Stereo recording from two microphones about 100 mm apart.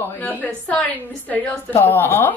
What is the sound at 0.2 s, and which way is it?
A woman's voice, 10° left (ahead or behind).